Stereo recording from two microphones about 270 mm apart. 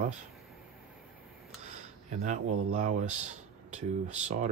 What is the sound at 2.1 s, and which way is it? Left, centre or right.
Speech, right.